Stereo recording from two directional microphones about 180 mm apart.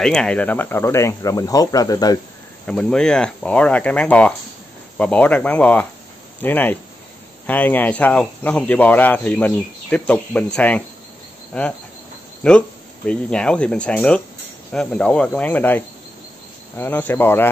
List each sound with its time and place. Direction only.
0.0 s speech: 5° left (ahead or behind); by 2.1 s 20° left (ahead or behind)
2.6 s speech: 5° left (ahead or behind)